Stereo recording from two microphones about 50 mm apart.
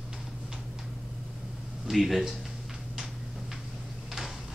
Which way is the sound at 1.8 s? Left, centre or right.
Centre.